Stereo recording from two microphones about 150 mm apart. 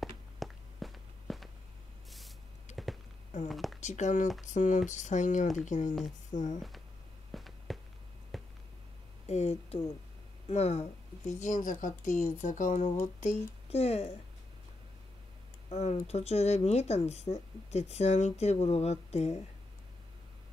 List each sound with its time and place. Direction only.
0.0 s walk: centre (ahead or behind)
2.0 s spray: centre (ahead or behind)
2.7 s a sound: centre (ahead or behind)
3.4 s speech: centre (ahead or behind)
3.8 s a woman's voice: 50° left (ahead or behind)
7.3 s a sound: centre (ahead or behind)
9.3 s a woman's voice: 45° left (ahead or behind)
13.7 s speech: 40° left (ahead or behind)
15.7 s speech: 45° left (ahead or behind)